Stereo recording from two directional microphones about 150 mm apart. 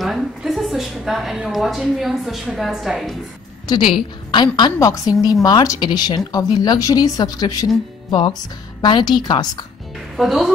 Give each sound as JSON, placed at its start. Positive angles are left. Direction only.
{"t": 0.0, "sound": "a woman's voice", "side_deg": 0}
{"t": 3.6, "sound": "speech", "side_deg": 30}
{"t": 10.1, "sound": "speech", "side_deg": 0}